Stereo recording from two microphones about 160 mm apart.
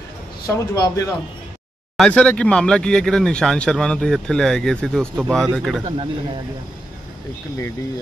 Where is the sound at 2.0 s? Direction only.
5° left (ahead or behind).